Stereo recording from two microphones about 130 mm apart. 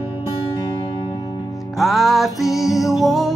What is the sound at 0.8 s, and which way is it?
Music, 35° left (ahead or behind).